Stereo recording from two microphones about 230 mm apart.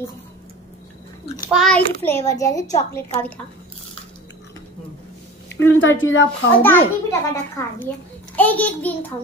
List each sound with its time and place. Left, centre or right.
1.5 s a child's voice: centre
5.5 s a woman's voice: left
6.6 s a child's voice: centre